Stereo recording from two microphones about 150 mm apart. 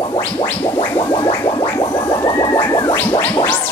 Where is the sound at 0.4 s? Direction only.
30° left (ahead or behind).